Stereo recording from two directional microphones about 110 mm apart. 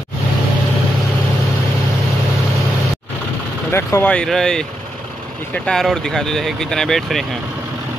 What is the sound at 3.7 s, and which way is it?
Speech, 25° left (ahead or behind).